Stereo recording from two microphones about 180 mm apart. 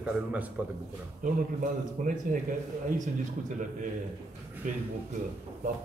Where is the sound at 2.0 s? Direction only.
45° right (ahead or behind).